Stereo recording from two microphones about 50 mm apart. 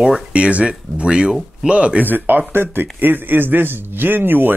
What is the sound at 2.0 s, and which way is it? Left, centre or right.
A man's voice, right.